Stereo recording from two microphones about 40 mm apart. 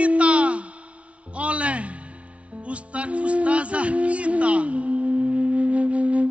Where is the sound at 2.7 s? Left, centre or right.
Right.